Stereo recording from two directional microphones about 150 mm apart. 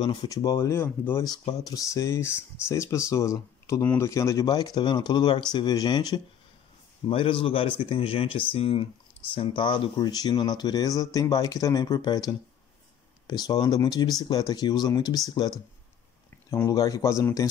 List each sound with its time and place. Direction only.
0.0 s speech: 30° left (ahead or behind); by 1.2 s 15° left (ahead or behind)
1.2 s speech: 25° left (ahead or behind)